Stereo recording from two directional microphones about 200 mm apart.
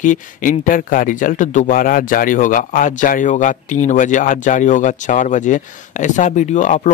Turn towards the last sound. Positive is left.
turn(degrees=40)  # may be behind; listen again after turning